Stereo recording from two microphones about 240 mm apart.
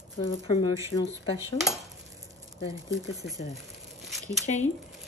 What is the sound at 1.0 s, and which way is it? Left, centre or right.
Speech, centre.